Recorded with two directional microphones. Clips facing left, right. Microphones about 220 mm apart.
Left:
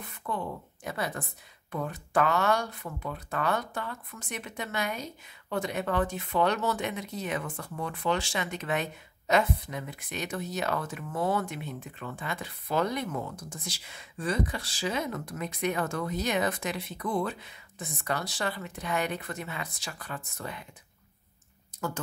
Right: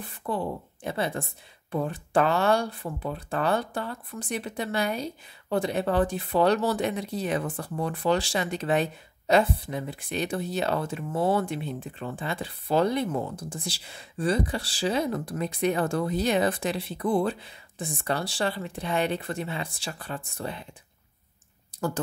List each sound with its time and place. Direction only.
0.0 s a woman's voice: 30° right (ahead or behind)
21.7 s speech: 35° right (ahead or behind)